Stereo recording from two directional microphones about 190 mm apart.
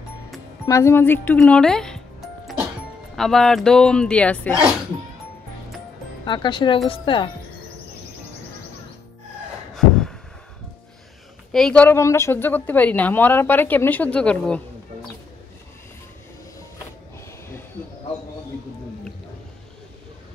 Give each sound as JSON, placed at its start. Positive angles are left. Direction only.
{"t": 0.7, "sound": "a woman's voice", "side_deg": 15}
{"t": 3.2, "sound": "speech", "side_deg": 0}
{"t": 6.2, "sound": "speech", "side_deg": 25}
{"t": 9.8, "sound": "a sound", "side_deg": 0}
{"t": 11.5, "sound": "a woman's voice", "side_deg": 5}